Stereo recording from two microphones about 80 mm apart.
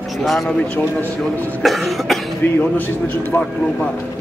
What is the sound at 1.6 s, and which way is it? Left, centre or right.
Cough, centre.